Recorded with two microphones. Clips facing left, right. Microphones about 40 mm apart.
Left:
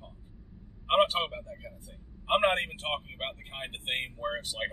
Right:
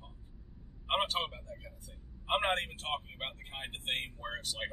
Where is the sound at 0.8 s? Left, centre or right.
Centre.